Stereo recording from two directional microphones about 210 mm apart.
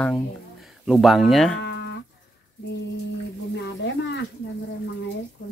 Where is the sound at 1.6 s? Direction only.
55° left (ahead or behind).